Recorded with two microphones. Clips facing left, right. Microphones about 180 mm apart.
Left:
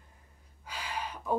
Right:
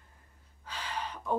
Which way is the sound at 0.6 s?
10° left (ahead or behind).